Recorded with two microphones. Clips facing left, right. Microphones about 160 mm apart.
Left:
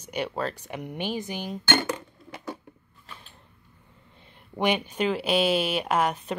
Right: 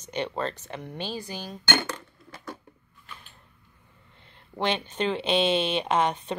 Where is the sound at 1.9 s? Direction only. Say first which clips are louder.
Left 5 dB; 15° left (ahead or behind).